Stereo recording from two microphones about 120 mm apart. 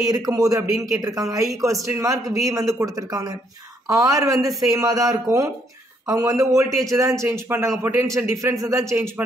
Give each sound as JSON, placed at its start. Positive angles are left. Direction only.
{"t": 0.0, "sound": "a man's voice", "side_deg": -30}